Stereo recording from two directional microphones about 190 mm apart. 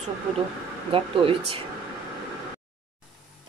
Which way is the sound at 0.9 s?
30° right (ahead or behind).